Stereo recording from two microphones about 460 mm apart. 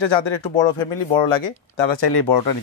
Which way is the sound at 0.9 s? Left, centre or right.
Left.